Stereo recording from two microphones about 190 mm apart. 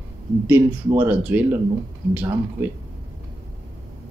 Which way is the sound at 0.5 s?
10° right (ahead or behind).